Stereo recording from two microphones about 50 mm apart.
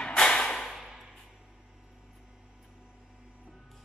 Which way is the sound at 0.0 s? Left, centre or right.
Left.